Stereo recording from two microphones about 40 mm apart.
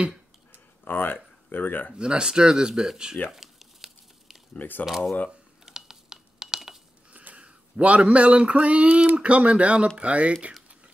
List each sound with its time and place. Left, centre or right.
0.8 s speech: left
2.0 s speech: right
3.3 s crumpling: centre
4.6 s speech: left
5.7 s a sound: centre
7.1 s speech: right